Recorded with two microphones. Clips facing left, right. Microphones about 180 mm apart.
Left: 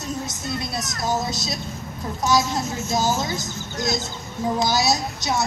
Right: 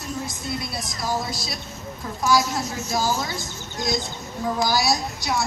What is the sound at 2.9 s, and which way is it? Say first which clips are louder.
Speech: left 2 dB; 20° left (ahead or behind).